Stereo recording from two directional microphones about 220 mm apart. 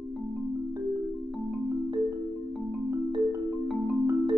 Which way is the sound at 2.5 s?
5° right (ahead or behind).